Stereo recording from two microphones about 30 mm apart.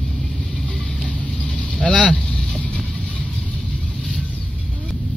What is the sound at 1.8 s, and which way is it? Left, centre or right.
Vehicle, left.